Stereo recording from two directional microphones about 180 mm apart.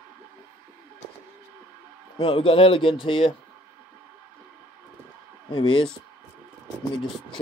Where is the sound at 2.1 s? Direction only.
30° left (ahead or behind).